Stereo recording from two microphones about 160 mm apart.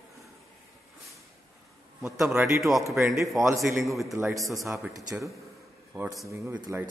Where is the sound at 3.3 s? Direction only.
20° right (ahead or behind).